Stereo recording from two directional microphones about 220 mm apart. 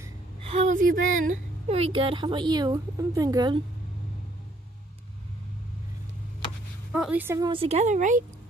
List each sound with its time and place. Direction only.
0.4 s a woman's voice: 30° right (ahead or behind)
6.9 s a woman's voice: 5° right (ahead or behind); by 8.2 s 35° right (ahead or behind)